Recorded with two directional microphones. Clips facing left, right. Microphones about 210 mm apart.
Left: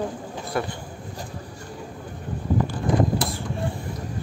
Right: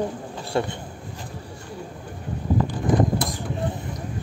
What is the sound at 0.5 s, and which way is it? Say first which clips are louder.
Speech: right 3 dB; 25° right (ahead or behind).